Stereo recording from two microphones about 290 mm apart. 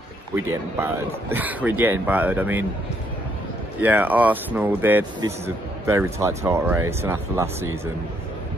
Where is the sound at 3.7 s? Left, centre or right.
Centre.